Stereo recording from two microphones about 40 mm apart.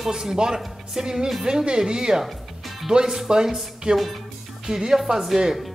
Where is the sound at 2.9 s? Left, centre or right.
Centre.